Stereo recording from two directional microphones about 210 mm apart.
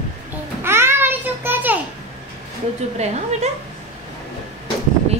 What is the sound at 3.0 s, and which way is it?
Speech, 30° right (ahead or behind).